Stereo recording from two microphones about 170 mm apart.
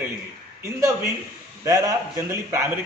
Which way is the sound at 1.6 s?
20° right (ahead or behind).